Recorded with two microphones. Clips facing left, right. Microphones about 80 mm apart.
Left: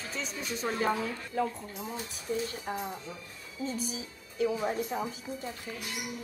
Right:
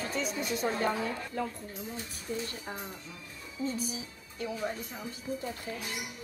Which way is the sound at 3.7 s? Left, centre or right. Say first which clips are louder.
Even; centre.